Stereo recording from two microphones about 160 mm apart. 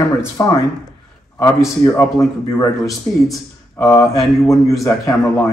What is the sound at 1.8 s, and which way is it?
Speech, 20° left (ahead or behind).